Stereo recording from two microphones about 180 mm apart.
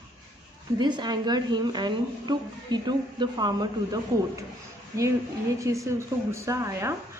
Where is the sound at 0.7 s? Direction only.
25° right (ahead or behind).